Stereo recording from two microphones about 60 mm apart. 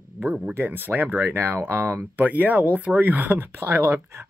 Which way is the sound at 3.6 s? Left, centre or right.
Right.